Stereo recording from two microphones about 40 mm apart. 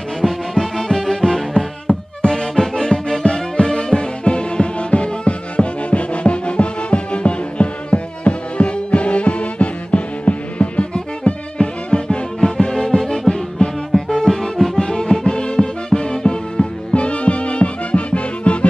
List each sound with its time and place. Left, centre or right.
0.2 s music: centre
13.6 s music: left
13.9 s music: centre
16.9 s music: left